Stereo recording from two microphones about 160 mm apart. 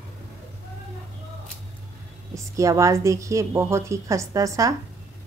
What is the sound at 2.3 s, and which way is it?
Speech, 20° right (ahead or behind).